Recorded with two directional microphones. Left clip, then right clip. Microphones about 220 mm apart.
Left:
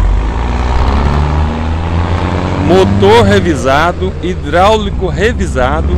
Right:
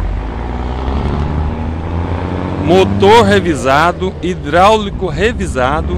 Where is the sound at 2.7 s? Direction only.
10° right (ahead or behind).